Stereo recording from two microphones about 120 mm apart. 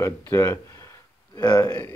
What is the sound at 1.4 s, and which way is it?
Speech, 35° left (ahead or behind).